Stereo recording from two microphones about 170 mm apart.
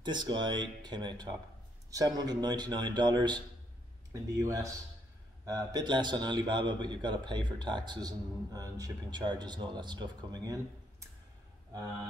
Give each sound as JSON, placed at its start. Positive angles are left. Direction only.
{"t": 0.0, "sound": "a man's voice", "side_deg": -25}